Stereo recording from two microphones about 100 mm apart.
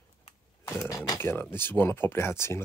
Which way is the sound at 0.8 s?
35° left (ahead or behind).